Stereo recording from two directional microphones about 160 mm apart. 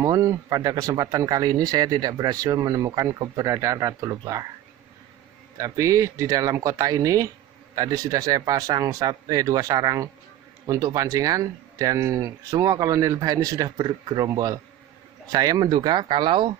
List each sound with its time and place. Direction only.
0.0 s speech: 20° right (ahead or behind)
5.6 s speech: 20° right (ahead or behind)